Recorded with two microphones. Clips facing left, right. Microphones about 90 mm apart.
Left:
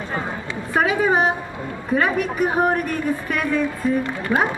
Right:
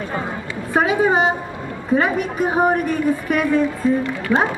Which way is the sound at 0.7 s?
20° right (ahead or behind).